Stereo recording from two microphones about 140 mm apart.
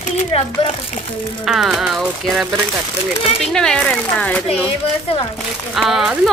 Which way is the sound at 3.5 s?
5° left (ahead or behind).